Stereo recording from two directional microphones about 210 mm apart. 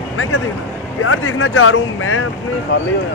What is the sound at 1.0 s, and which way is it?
Speech, 75° left (ahead or behind).